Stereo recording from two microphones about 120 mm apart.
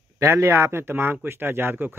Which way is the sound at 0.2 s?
25° right (ahead or behind).